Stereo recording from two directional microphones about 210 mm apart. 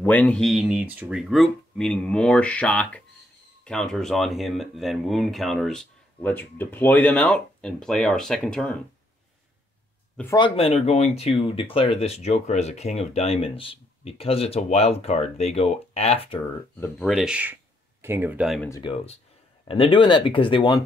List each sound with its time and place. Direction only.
0.0 s speech: 5° left (ahead or behind)
10.3 s speech: 25° left (ahead or behind)
16.8 s speech: centre (ahead or behind)
18.7 s speech: 25° left (ahead or behind)